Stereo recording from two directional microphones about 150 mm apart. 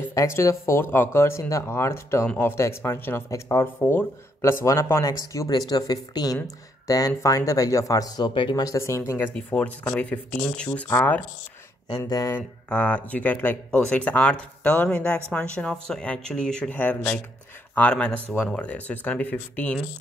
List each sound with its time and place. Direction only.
0.1 s speech: 20° left (ahead or behind)
9.3 s speech: 10° left (ahead or behind)
10.7 s speech: 20° left (ahead or behind)
12.4 s speech: 10° left (ahead or behind)